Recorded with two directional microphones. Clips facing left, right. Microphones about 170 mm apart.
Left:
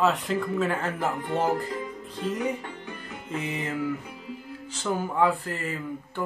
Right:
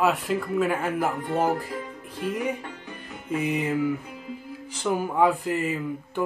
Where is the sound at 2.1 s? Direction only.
10° right (ahead or behind).